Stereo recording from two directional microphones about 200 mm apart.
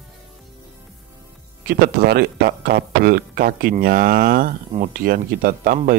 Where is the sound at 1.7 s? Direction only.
50° right (ahead or behind).